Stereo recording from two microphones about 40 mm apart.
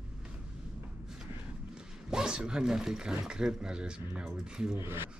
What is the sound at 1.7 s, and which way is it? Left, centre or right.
Speech, centre.